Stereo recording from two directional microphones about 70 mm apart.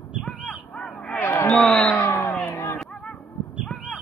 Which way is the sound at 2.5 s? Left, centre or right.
Left.